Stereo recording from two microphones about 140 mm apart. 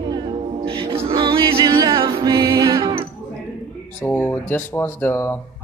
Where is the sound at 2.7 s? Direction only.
40° right (ahead or behind).